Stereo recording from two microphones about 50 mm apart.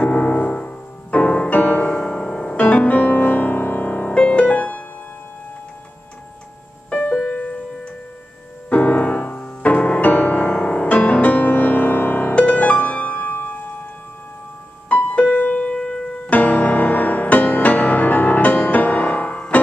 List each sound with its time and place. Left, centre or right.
0.0 s music: left
6.9 s music: left
10.5 s music: centre
10.9 s music: left
15.0 s music: left
16.3 s music: left